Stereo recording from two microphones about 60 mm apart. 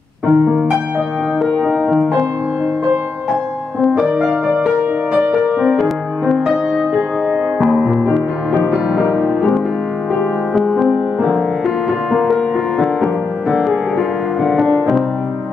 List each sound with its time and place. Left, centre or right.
0.3 s music: centre
3.9 s music: centre
4.3 s music: centre
7.6 s music: centre
9.2 s music: centre
10.8 s music: centre